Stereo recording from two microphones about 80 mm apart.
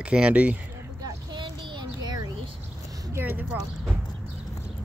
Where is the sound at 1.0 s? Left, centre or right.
Right.